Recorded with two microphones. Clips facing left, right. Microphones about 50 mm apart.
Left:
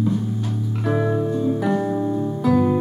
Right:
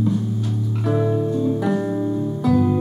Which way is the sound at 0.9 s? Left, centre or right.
Centre.